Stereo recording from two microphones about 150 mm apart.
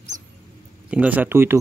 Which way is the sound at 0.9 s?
10° right (ahead or behind).